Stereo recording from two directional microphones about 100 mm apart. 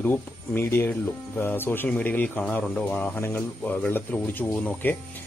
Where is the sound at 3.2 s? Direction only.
20° left (ahead or behind).